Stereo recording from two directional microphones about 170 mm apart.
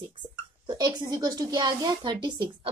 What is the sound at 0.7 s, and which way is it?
Speech, 25° right (ahead or behind).